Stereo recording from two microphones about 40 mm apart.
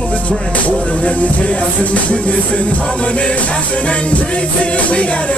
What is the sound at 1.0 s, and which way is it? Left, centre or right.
Music, left.